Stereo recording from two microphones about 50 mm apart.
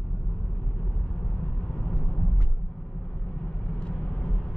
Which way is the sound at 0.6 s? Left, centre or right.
Centre.